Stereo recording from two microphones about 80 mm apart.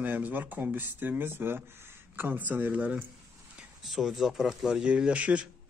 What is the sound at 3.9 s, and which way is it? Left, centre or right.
Speech, centre.